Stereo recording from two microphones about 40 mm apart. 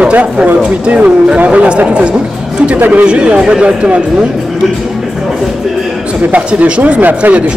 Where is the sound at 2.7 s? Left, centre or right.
Right.